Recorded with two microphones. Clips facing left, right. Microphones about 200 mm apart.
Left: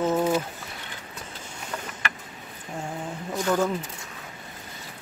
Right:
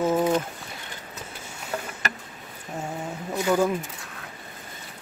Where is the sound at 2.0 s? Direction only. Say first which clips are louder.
Even; 40° right (ahead or behind).